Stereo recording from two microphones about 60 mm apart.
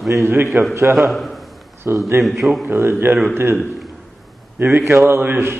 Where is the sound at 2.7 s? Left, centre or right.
Right.